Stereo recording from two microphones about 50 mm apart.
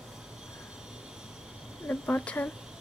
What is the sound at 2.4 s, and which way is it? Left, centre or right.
Speech, left.